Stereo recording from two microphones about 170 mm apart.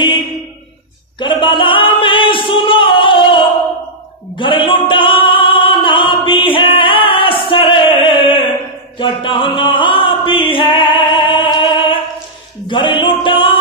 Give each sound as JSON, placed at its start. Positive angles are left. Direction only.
{"t": 1.2, "sound": "a sound", "side_deg": 30}
{"t": 4.4, "sound": "opera", "side_deg": 30}
{"t": 8.9, "sound": "music", "side_deg": 30}